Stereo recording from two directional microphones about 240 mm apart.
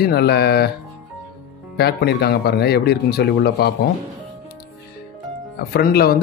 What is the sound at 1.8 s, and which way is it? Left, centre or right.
Speech, left.